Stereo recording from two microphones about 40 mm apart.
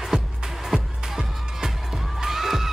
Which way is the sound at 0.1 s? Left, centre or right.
Right.